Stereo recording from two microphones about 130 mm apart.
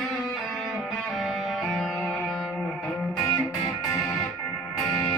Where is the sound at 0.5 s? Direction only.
Centre (ahead or behind).